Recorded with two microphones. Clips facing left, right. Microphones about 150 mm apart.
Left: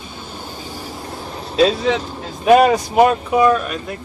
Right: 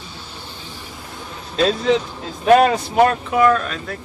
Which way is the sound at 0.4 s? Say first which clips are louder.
Left 5 dB; 45° left (ahead or behind).